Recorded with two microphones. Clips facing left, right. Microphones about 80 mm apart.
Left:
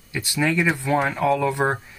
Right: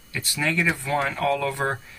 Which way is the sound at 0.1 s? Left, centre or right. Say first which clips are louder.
Left 4 dB; centre.